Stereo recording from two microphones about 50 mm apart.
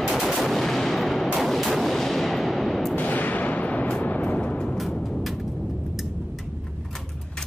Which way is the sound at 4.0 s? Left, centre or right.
Left.